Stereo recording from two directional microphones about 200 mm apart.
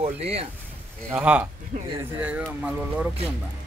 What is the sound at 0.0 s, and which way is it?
Speech, 30° right (ahead or behind).